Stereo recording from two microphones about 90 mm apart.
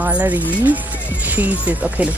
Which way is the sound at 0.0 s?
20° right (ahead or behind).